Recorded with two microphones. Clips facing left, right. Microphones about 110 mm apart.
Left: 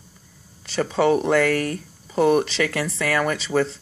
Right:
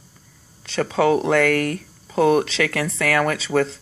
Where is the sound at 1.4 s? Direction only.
65° right (ahead or behind).